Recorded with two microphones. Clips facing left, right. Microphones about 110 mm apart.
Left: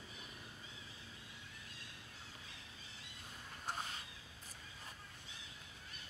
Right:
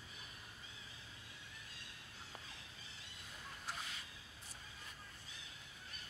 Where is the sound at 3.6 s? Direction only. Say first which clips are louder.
Left 5 dB; 40° left (ahead or behind).